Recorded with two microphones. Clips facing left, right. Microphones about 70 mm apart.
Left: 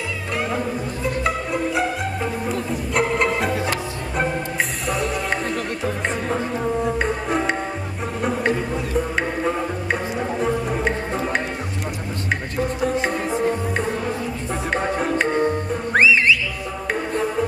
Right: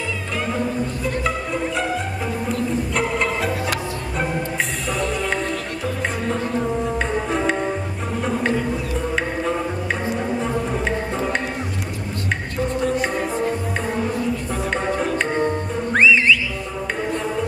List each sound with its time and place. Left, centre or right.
1.0 s music: centre
4.8 s music: centre
12.5 s music: centre
14.7 s music: centre